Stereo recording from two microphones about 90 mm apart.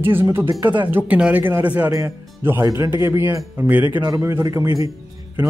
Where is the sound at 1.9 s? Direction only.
30° right (ahead or behind).